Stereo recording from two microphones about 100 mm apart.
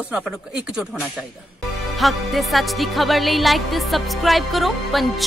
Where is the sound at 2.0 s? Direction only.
Centre (ahead or behind).